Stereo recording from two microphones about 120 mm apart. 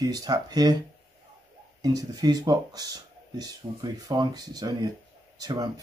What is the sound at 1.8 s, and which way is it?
Speech, 35° right (ahead or behind).